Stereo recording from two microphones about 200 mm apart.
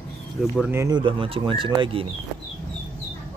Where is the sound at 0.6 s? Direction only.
10° right (ahead or behind).